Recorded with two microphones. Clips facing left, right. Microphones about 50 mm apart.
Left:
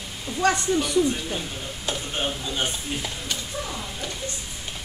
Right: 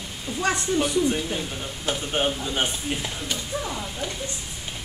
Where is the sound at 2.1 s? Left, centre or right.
Right.